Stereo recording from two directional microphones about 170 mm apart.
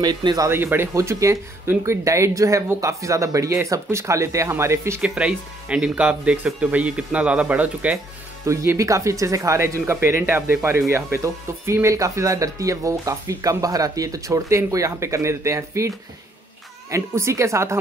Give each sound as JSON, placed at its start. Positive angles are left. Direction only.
{"t": 0.0, "sound": "speech", "side_deg": -25}
{"t": 16.9, "sound": "speech", "side_deg": -15}